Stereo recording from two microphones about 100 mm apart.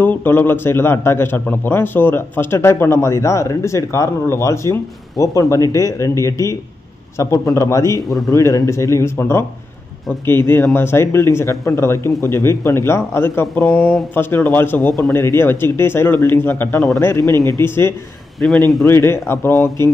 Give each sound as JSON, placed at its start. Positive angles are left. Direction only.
{"t": 0.0, "sound": "a man's voice", "side_deg": 20}
{"t": 13.7, "sound": "speech", "side_deg": 5}
{"t": 14.1, "sound": "a man's voice", "side_deg": 20}